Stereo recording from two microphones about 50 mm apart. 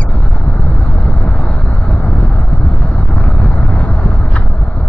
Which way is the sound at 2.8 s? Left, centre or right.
Left.